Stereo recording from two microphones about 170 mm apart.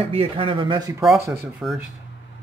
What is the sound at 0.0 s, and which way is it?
Speech, 35° right (ahead or behind).